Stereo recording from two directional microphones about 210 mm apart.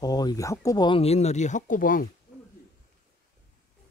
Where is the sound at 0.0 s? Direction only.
20° left (ahead or behind); by 2.0 s 40° left (ahead or behind).